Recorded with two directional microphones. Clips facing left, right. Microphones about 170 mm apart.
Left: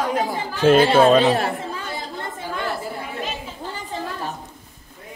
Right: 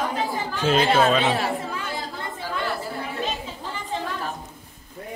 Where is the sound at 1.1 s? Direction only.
40° left (ahead or behind).